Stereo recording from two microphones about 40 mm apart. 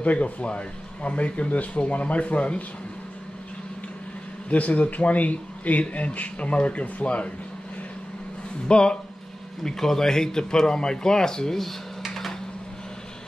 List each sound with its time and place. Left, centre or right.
0.0 s speech: left
4.5 s speech: left
8.6 s speech: left
9.6 s speech: centre
12.1 s a sound: centre